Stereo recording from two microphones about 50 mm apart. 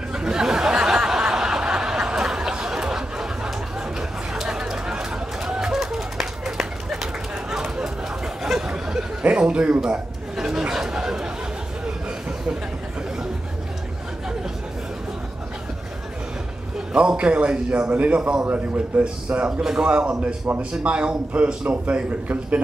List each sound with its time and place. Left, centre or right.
0.1 s a sound: centre
8.4 s chatter: centre
9.2 s chuckle: right
10.3 s chatter: centre
16.9 s a man's voice: centre